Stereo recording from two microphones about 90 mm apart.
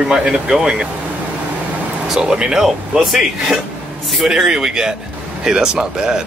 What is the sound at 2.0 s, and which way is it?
Speech, 5° right (ahead or behind).